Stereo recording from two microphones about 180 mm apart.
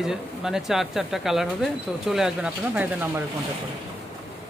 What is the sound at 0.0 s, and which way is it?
Speech, 5° right (ahead or behind).